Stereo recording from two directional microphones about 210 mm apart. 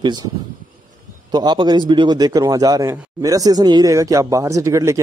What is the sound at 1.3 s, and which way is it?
Speech, 20° right (ahead or behind).